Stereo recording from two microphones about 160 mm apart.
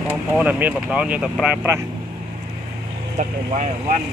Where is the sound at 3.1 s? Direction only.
50° right (ahead or behind).